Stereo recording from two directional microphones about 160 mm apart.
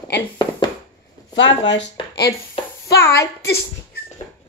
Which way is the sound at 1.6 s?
90° left.